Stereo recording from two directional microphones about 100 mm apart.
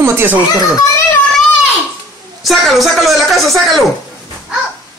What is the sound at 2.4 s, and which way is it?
Speech, centre (ahead or behind).